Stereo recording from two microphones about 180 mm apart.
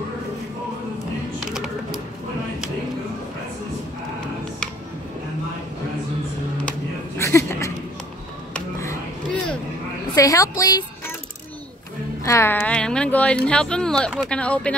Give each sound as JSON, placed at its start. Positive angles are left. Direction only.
{"t": 7.2, "sound": "a sound", "side_deg": 15}
{"t": 10.1, "sound": "speech", "side_deg": 20}
{"t": 12.3, "sound": "speech", "side_deg": 15}